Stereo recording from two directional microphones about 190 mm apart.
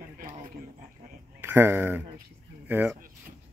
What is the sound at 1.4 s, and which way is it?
Speech, 10° right (ahead or behind).